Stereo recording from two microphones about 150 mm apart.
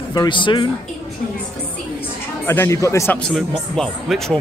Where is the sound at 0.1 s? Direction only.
30° left (ahead or behind).